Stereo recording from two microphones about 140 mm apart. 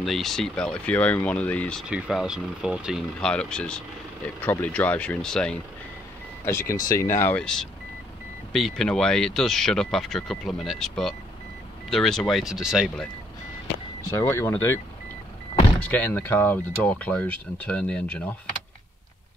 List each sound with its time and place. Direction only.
0.0 s speech: centre (ahead or behind)
1.9 s speech: 5° right (ahead or behind)
6.4 s speech: 20° left (ahead or behind)
7.3 s speech: 5° left (ahead or behind)
14.1 s speech: 20° left (ahead or behind)
15.8 s speech: 10° left (ahead or behind)